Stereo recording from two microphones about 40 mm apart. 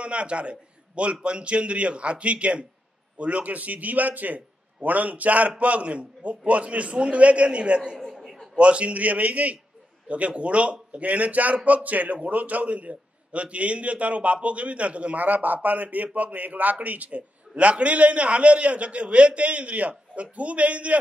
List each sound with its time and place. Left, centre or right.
0.0 s a man's voice: right
8.2 s a sound: centre
8.5 s a man's voice: right